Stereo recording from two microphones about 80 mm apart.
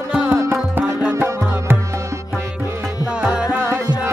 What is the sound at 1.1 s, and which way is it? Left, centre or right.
Music, right.